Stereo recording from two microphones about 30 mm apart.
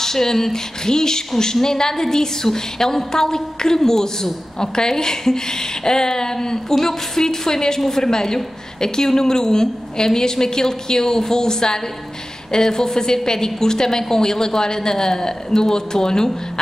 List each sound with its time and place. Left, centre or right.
0.0 s a woman's voice: centre